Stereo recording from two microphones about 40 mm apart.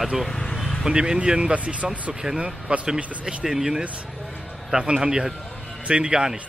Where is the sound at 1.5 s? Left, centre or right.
Right.